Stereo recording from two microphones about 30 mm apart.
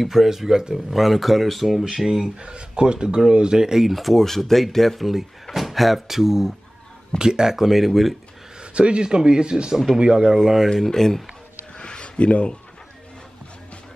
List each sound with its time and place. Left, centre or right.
0.0 s speech: centre
0.8 s speech: centre
1.9 s speech: right
2.4 s speech: right
3.8 s speech: centre
4.2 s speech: centre
5.0 s speech: centre
7.2 s speech: right; by 8.2 s centre
8.7 s speech: right
10.1 s speech: centre
10.9 s speech: centre
11.8 s a sound: left